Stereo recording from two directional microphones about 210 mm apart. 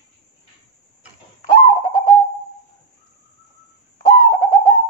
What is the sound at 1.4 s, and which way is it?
Bird, 20° left (ahead or behind).